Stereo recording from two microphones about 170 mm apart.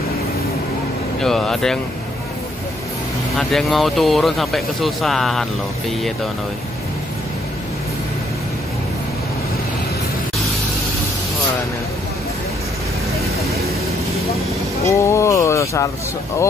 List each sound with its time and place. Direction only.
1.2 s speech: 5° left (ahead or behind)
3.3 s speech: centre (ahead or behind)
14.9 s speech: 15° left (ahead or behind)